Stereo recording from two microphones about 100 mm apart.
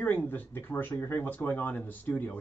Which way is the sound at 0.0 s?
15° left (ahead or behind).